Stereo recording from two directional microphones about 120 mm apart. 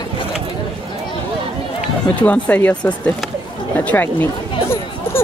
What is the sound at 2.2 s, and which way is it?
Speech, 10° left (ahead or behind).